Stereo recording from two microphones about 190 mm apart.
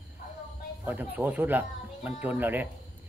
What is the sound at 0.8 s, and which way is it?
A man's voice, 10° right (ahead or behind).